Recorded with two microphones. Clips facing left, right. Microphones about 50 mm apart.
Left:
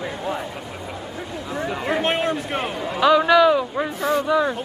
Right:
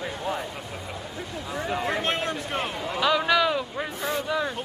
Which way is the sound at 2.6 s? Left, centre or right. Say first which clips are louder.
Left 5 dB; centre.